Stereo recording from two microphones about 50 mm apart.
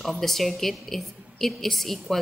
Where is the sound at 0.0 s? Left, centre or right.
Centre.